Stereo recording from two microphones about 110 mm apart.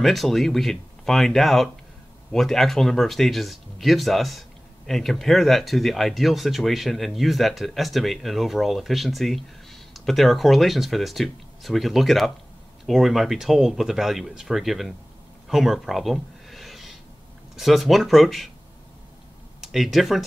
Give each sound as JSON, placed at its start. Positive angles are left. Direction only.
{"t": 0.0, "sound": "speech", "side_deg": 0}
{"t": 15.4, "sound": "a sound", "side_deg": 0}
{"t": 17.6, "sound": "speech", "side_deg": 0}
{"t": 19.6, "sound": "speech", "side_deg": 0}